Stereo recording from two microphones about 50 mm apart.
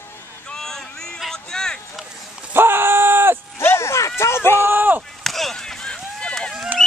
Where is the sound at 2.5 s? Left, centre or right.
Right.